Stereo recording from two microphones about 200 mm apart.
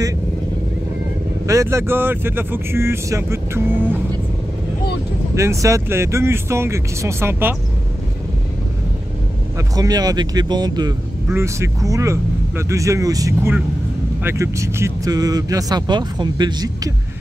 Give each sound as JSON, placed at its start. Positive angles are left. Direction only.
{"t": 1.5, "sound": "speech", "side_deg": -15}
{"t": 5.3, "sound": "speech", "side_deg": -15}
{"t": 9.6, "sound": "speech", "side_deg": -20}